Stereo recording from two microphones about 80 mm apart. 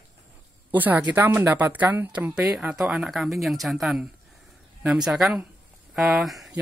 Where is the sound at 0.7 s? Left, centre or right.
Right; by 5.3 s centre.